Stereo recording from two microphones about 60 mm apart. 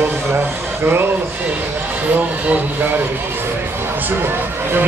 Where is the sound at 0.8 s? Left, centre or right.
Right.